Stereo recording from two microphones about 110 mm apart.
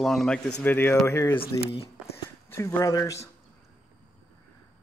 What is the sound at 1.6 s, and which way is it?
Speech, 65° left (ahead or behind).